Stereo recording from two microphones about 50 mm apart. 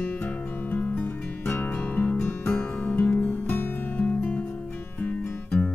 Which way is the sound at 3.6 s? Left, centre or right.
Left.